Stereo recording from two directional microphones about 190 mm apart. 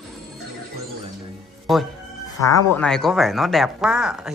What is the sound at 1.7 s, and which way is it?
A man's voice, centre (ahead or behind).